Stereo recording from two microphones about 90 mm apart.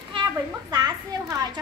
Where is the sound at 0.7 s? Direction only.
45° right (ahead or behind).